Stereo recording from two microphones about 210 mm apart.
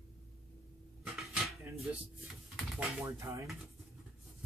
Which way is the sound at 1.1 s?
Centre (ahead or behind).